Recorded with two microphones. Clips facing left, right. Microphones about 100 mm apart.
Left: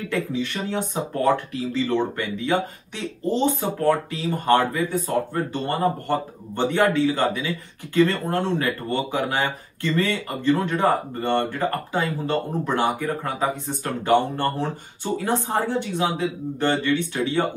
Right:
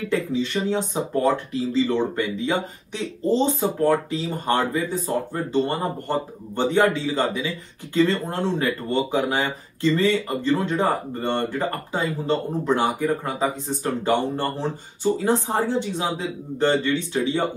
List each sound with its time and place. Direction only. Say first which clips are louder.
0.1 s speech: right 3 dB; 20° right (ahead or behind)
15.4 s speech: right 1 dB; 20° right (ahead or behind)